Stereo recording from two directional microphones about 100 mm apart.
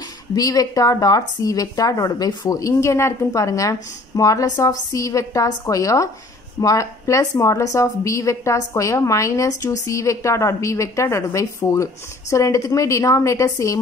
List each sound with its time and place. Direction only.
0.3 s a woman's voice: 40° left (ahead or behind)